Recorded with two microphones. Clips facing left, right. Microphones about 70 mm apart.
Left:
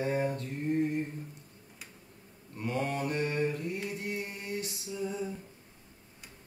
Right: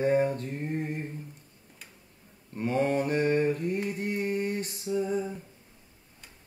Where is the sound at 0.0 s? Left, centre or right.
Right.